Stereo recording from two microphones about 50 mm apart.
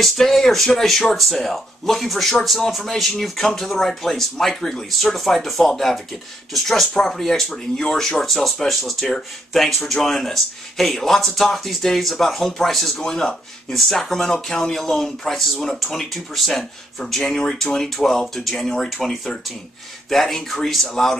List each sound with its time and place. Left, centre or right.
0.0 s speech: centre